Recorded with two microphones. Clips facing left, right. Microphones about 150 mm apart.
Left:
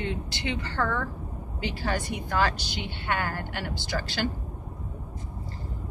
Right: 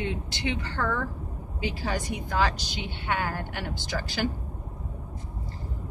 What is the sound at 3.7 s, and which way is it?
Speech, 90° left.